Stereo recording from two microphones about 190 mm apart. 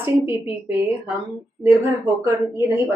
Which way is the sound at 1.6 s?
Centre (ahead or behind).